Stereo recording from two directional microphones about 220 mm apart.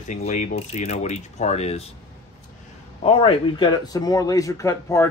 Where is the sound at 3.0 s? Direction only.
20° left (ahead or behind).